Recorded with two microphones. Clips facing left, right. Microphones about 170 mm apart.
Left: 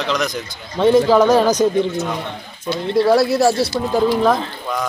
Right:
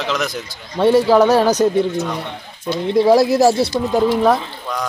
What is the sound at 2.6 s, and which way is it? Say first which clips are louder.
Speech: right 2 dB; 15° right (ahead or behind).